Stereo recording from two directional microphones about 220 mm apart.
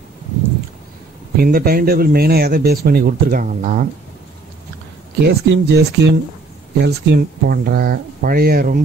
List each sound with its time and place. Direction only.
1.3 s speech: 45° right (ahead or behind)
5.2 s speech: 50° right (ahead or behind)